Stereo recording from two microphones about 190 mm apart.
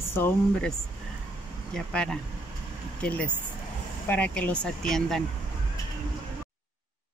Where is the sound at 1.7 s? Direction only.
5° left (ahead or behind).